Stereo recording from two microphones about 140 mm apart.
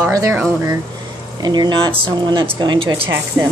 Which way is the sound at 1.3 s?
30° right (ahead or behind).